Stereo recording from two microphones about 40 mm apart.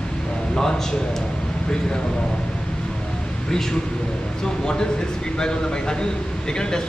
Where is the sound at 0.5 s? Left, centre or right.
Centre.